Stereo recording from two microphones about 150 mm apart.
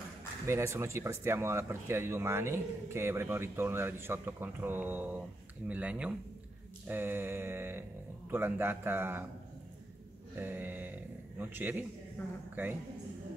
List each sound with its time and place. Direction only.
0.5 s speech: 20° right (ahead or behind)
10.4 s a sound: 10° right (ahead or behind)
11.3 s speech: 15° right (ahead or behind)
12.2 s speech: 5° left (ahead or behind)